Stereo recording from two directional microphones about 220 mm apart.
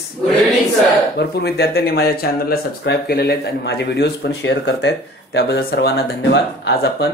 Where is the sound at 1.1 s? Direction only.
45° left (ahead or behind).